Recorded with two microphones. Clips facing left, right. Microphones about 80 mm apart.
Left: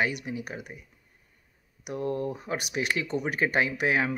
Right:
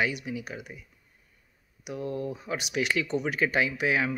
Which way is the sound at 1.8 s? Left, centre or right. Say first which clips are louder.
Left 2 dB; left.